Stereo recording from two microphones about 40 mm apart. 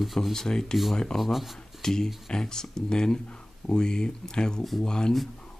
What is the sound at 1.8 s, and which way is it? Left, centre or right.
Speech, centre.